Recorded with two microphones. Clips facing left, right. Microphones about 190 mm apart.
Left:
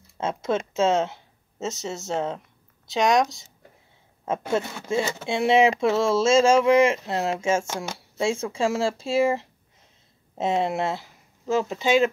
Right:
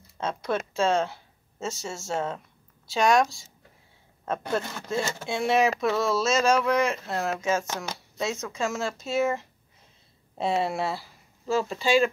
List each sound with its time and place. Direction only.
0.2 s speech: 20° left (ahead or behind)
4.6 s speech: 5° left (ahead or behind)
5.2 s speech: 20° left (ahead or behind)
7.7 s speech: 10° left (ahead or behind)
8.2 s speech: 30° left (ahead or behind)